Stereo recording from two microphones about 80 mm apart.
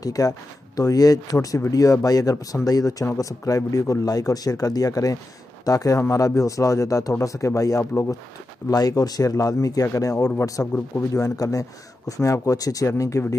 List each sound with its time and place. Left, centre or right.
0.0 s speech: left